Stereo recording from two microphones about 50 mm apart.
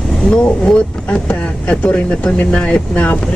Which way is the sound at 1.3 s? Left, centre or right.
Left.